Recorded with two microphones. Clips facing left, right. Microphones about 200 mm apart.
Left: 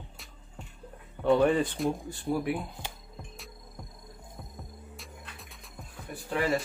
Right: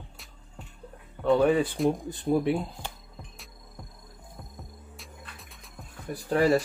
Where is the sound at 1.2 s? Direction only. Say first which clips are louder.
Right 1 dB; centre (ahead or behind); by 2.6 s 25° right (ahead or behind).